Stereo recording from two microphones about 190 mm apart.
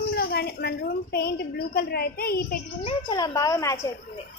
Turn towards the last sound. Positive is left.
turn(degrees=15)  # may be behind; listen again after turning